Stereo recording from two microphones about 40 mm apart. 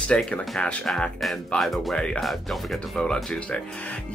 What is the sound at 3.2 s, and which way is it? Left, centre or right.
Speech, centre.